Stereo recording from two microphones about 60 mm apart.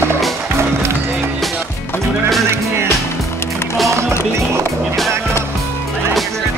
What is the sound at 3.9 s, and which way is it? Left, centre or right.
Speech, right.